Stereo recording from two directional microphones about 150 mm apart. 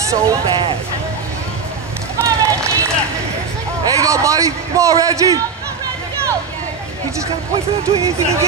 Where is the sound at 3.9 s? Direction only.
20° right (ahead or behind).